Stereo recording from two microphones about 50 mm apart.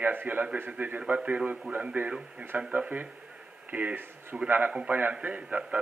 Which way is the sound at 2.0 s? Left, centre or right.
Right.